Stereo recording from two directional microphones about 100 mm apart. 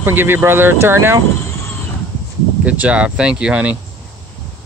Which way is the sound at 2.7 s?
15° right (ahead or behind).